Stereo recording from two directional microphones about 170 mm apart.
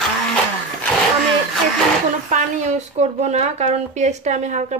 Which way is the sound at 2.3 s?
40° right (ahead or behind).